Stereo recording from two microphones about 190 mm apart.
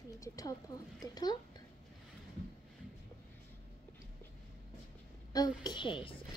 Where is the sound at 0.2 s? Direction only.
20° left (ahead or behind).